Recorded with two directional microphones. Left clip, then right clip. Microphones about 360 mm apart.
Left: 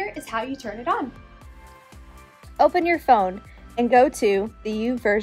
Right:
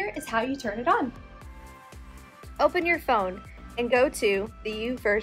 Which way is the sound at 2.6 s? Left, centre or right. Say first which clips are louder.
Left 5 dB; left.